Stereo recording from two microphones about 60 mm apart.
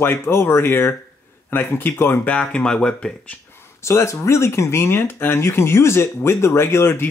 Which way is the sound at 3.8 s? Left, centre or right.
Left.